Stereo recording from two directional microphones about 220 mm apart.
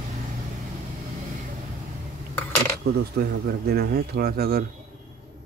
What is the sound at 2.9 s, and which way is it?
Speech, 45° right (ahead or behind).